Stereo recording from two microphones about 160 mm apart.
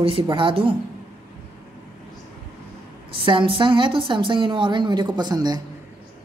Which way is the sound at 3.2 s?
30° right (ahead or behind).